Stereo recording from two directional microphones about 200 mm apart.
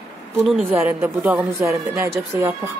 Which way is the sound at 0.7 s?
10° right (ahead or behind).